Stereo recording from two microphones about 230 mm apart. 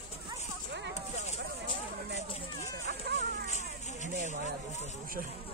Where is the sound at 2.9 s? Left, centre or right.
Right.